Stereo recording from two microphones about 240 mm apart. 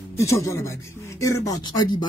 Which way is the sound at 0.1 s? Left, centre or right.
Centre.